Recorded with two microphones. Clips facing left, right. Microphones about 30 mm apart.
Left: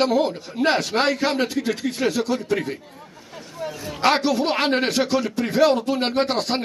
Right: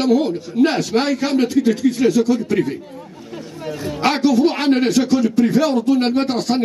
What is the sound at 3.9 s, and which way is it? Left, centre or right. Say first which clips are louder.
A man's voice: right 3 dB; centre.